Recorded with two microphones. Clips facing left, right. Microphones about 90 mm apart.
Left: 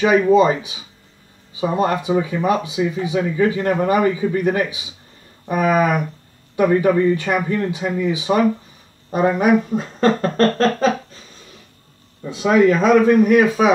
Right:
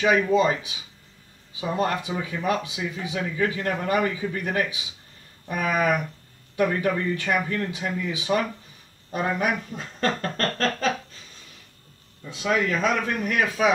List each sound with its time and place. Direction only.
0.0 s speech: 20° left (ahead or behind)
12.2 s speech: 25° left (ahead or behind)